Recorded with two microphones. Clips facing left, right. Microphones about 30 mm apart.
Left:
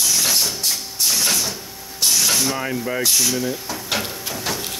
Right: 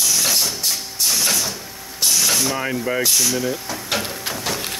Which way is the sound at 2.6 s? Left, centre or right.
Centre.